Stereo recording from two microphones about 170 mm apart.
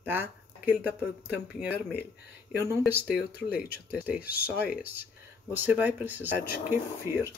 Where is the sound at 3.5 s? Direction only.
65° left (ahead or behind).